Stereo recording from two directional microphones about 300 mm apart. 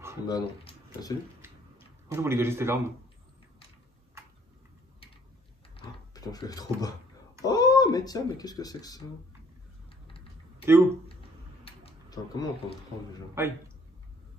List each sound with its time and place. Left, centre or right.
0.3 s speech: centre
2.0 s a man's voice: centre
5.8 s a sound: centre
7.4 s speech: centre
10.6 s speech: centre
11.6 s a sound: centre
13.4 s a man's voice: centre